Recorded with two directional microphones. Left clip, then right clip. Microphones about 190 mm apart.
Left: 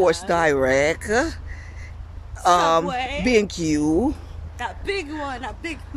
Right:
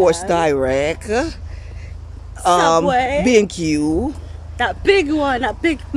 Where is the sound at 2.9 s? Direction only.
40° right (ahead or behind).